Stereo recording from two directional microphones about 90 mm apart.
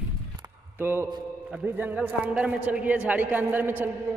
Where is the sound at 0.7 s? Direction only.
25° right (ahead or behind).